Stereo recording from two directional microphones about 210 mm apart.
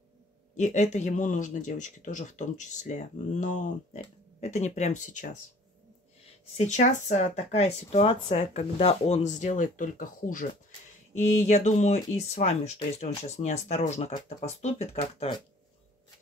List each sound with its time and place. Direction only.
0.6 s speech: 35° left (ahead or behind)
6.5 s speech: 35° left (ahead or behind)